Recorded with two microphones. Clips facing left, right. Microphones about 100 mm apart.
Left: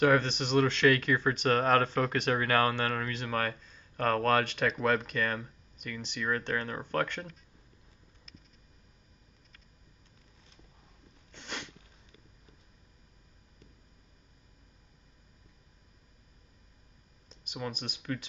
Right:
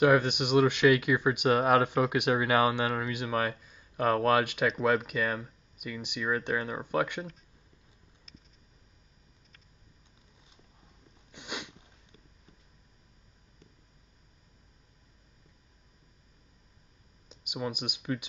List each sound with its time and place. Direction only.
0.0 s speech: 10° right (ahead or behind)
11.3 s cat: 10° right (ahead or behind)
17.3 s speech: 15° right (ahead or behind)